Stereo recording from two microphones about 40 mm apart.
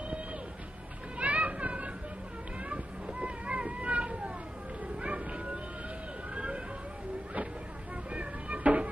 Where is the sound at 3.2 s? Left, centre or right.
Right.